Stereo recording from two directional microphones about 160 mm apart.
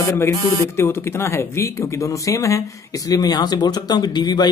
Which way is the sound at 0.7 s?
15° left (ahead or behind).